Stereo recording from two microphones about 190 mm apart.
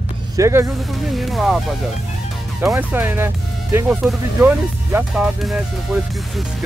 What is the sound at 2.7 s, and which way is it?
Speech, 10° right (ahead or behind).